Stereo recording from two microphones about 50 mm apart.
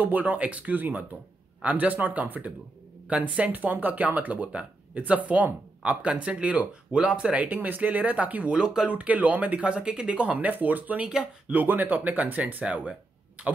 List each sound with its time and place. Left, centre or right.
0.0 s speech: right
7.4 s speech: right
8.5 s speech: centre
8.9 s speech: right
11.1 s speech: centre
11.5 s speech: right